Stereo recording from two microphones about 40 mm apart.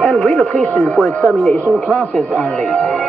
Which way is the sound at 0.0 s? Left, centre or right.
Left.